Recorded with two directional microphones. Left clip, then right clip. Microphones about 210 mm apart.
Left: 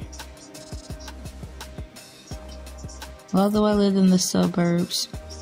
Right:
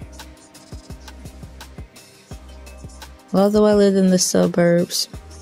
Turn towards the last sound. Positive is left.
turn(degrees=-30)  # may be behind; listen again after turning